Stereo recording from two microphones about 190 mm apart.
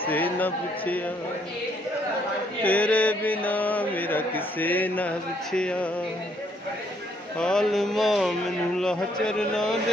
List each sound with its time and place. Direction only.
0.1 s mantra: 10° left (ahead or behind)
2.6 s mantra: 10° left (ahead or behind)
7.3 s a man's voice: 5° left (ahead or behind)